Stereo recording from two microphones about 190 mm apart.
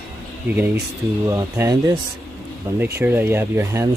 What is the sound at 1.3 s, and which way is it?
Speech, 15° right (ahead or behind).